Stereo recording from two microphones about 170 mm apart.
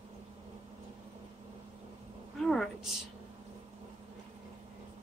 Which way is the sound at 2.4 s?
Centre (ahead or behind).